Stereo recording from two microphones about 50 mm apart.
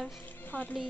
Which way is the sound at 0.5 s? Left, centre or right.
Left.